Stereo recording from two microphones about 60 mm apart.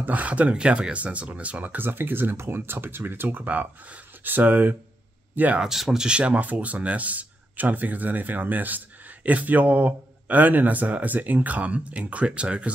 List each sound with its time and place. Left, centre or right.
0.0 s speech: right
5.6 s speech: centre
6.0 s speech: centre